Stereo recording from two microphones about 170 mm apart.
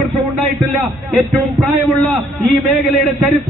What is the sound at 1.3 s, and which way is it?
Speech, centre (ahead or behind).